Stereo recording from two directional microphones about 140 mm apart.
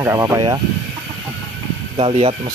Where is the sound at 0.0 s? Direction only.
20° right (ahead or behind).